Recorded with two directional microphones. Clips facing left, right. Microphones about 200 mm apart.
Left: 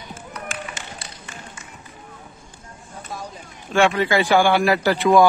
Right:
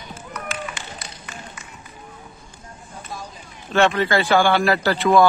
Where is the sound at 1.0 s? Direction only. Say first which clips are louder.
Right 1 dB; 30° left (ahead or behind).